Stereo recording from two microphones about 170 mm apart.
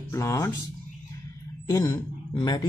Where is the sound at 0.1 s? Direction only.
20° left (ahead or behind).